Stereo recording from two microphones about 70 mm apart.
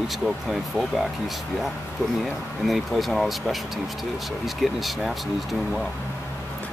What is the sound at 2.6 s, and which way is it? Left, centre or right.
Speech, centre.